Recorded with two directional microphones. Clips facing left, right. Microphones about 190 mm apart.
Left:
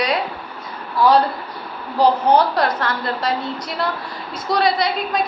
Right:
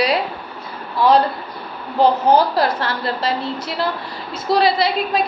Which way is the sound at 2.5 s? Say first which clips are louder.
Right 1 dB; 30° right (ahead or behind).